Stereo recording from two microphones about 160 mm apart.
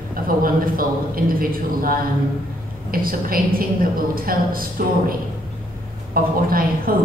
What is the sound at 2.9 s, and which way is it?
A woman's voice, 65° right (ahead or behind).